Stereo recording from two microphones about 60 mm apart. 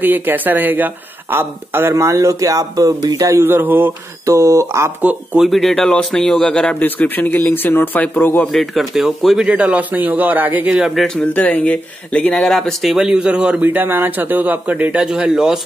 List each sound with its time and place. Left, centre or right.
0.0 s speech: right
2.0 s speech: right
3.2 s speech: right
3.4 s speech: right
4.3 s speech: right
5.4 s speech: centre
6.6 s a man's voice: left
8.5 s speech: centre
9.5 s a man's voice: right
11.1 s speech: left
12.4 s speech: centre
13.3 s a man's voice: right
13.7 s a man's voice: right; by 15.6 s centre